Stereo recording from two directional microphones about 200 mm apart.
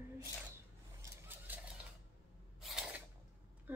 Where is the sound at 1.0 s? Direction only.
10° right (ahead or behind).